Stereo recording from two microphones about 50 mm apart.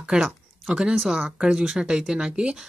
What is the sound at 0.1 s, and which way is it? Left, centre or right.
Speech, centre.